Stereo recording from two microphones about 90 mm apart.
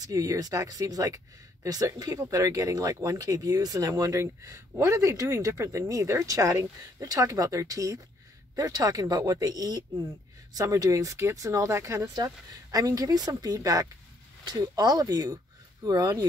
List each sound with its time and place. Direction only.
0.0 s speech: 40° right (ahead or behind)